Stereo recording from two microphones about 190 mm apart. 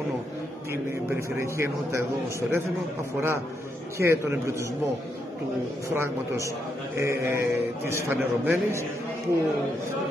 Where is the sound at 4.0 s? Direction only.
15° right (ahead or behind).